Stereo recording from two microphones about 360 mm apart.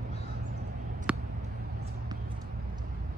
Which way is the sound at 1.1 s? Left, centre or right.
Centre.